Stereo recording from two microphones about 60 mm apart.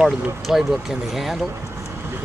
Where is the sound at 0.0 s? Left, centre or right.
Centre.